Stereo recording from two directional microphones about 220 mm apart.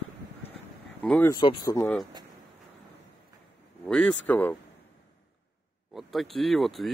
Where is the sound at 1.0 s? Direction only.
10° left (ahead or behind).